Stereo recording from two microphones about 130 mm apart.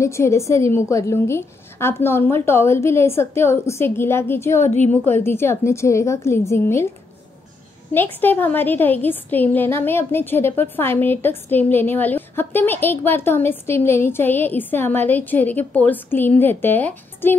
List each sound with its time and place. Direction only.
0.0 s a woman's voice: 20° left (ahead or behind)
4.6 s a woman's voice: 65° left (ahead or behind)
5.0 s a woman's voice: 20° left (ahead or behind)
7.9 s a woman's voice: 15° left (ahead or behind)